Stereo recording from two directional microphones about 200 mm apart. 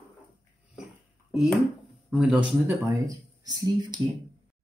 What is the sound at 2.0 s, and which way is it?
Speech, 5° right (ahead or behind).